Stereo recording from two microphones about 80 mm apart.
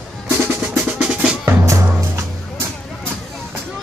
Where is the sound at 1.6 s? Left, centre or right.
Right.